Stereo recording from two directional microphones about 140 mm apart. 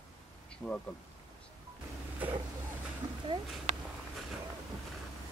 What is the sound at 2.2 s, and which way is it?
Vehicle, 10° right (ahead or behind).